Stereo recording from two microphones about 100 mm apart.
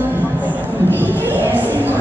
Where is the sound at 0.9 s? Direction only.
20° left (ahead or behind).